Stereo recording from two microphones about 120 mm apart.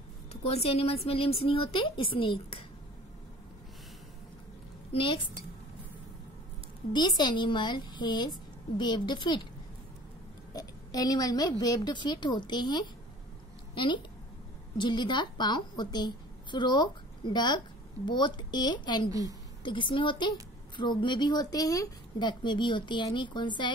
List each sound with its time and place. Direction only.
0.3 s a woman's voice: 60° left (ahead or behind)
4.9 s a woman's voice: 45° left (ahead or behind)
6.9 s a woman's voice: 40° left (ahead or behind)
10.5 s a woman's voice: 30° left (ahead or behind)